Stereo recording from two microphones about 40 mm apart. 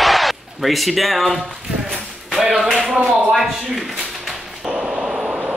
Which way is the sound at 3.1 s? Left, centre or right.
Centre.